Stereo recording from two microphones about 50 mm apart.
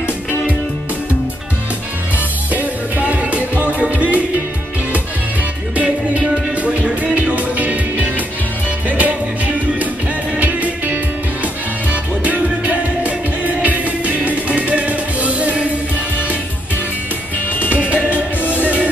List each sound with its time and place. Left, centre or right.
2.1 s music: right
5.8 s music: right
17.5 s music: left
17.7 s music: right